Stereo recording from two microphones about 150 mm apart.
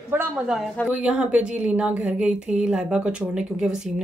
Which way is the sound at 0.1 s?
15° right (ahead or behind).